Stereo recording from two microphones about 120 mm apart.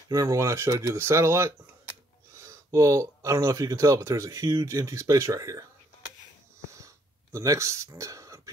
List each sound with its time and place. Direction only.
0.1 s speech: 30° right (ahead or behind)
7.3 s speech: 25° right (ahead or behind)